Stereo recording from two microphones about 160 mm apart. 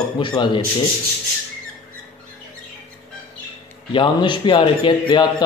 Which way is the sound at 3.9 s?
30° left (ahead or behind).